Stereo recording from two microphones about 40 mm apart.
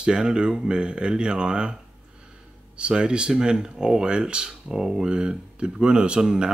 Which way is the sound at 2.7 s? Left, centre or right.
Right.